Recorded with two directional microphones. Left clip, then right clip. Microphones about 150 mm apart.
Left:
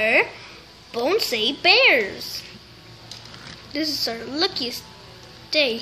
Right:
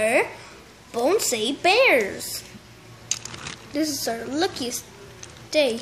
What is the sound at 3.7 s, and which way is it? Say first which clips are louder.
A woman's voice: left 1 dB; 25° right (ahead or behind).